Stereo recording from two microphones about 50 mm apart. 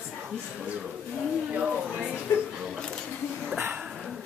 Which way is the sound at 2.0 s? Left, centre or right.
Centre.